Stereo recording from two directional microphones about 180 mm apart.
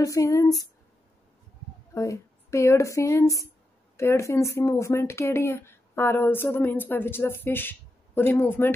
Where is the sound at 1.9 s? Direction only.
15° left (ahead or behind).